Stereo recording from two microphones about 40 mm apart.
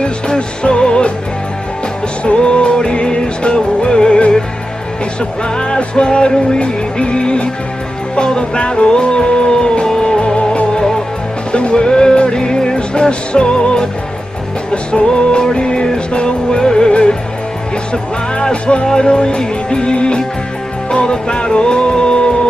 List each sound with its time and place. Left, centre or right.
0.0 s music: left
2.2 s music: left
5.6 s music: left
18.4 s music: left